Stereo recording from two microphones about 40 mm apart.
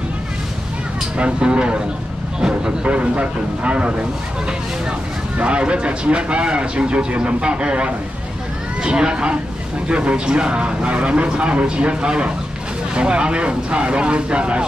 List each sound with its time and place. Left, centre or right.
1.1 s speech: right
2.9 s speech: right
5.4 s speech: right